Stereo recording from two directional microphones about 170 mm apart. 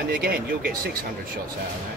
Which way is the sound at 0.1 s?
60° right (ahead or behind).